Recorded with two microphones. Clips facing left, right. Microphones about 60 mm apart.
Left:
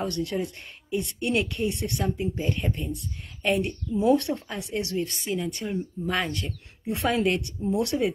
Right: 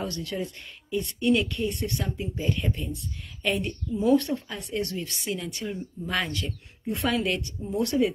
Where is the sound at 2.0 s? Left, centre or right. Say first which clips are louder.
Left 4 dB; left.